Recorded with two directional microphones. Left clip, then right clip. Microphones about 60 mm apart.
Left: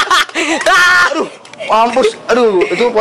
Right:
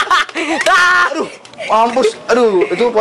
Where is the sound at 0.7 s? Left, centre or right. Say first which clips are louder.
Left 2 dB; centre.